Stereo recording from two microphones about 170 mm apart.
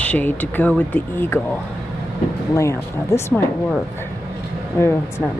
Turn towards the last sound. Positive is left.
turn(degrees=15)  # may be behind; listen again after turning